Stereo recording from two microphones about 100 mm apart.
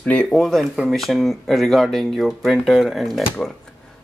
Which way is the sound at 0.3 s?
Centre (ahead or behind).